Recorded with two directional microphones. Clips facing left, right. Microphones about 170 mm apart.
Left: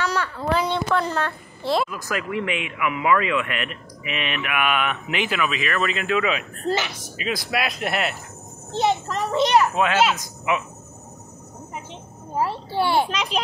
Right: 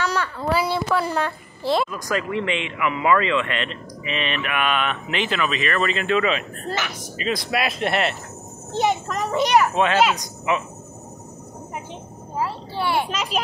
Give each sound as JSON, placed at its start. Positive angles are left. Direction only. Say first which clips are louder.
{"t": 0.0, "sound": "speech", "louder": "right 1 dB", "side_deg": -15}
{"t": 1.6, "sound": "speech", "louder": "right 1 dB", "side_deg": 0}
{"t": 8.7, "sound": "speech", "louder": "even", "side_deg": -15}
{"t": 10.1, "sound": "speech", "louder": "right 1 dB", "side_deg": 5}
{"t": 12.4, "sound": "a child's voice", "louder": "left 3 dB", "side_deg": 30}
{"t": 13.1, "sound": "speech", "louder": "even", "side_deg": -5}